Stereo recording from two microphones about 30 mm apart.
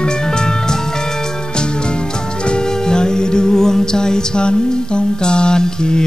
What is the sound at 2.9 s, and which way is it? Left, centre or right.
Music, left.